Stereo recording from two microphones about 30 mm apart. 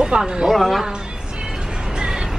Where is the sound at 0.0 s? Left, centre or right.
Right.